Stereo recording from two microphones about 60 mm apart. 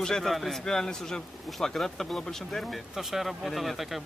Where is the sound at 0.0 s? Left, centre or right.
Centre.